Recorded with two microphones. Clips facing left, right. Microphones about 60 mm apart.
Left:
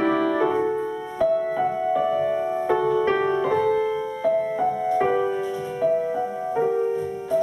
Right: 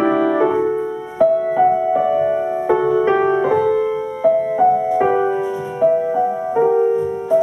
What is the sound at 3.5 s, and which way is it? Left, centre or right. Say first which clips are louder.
Music: right 5 dB; centre.